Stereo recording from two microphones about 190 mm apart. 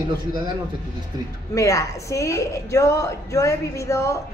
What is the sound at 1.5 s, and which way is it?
A woman's voice, 15° left (ahead or behind).